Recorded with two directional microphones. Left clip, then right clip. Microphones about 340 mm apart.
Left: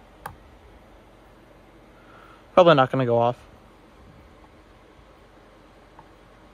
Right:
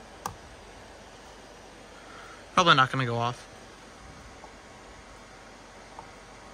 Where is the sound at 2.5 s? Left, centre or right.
Centre.